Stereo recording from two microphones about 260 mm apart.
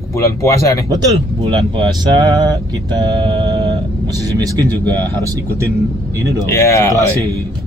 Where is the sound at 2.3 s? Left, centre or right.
Centre.